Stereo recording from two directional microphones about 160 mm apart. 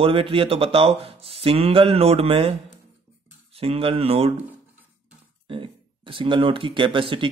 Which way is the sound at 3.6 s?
35° right (ahead or behind).